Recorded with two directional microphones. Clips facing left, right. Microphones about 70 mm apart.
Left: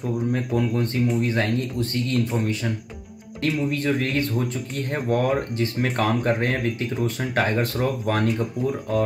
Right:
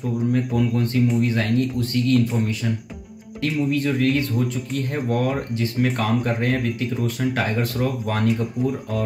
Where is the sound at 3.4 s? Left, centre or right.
Left.